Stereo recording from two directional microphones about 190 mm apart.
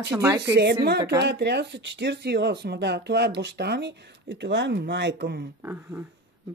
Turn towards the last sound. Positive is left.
turn(degrees=-10)  # may be behind; listen again after turning